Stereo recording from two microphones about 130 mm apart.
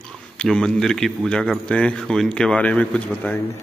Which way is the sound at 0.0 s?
5° left (ahead or behind).